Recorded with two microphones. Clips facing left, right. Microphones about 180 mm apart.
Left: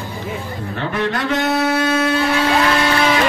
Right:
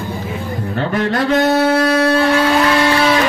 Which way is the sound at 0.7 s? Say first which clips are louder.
Right 4 dB; 35° right (ahead or behind).